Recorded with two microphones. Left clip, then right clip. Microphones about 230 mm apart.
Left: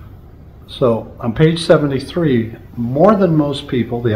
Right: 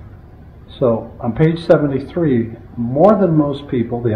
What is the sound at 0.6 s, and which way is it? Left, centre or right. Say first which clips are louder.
Speech: left 1 dB; left.